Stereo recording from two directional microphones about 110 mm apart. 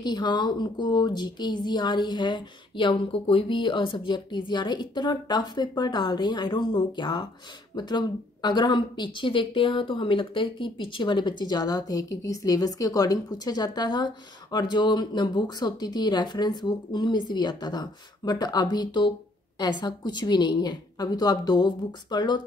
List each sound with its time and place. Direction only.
0.0 s speech: 40° left (ahead or behind)